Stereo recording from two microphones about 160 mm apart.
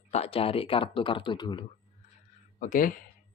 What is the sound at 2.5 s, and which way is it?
Speech, 60° left (ahead or behind).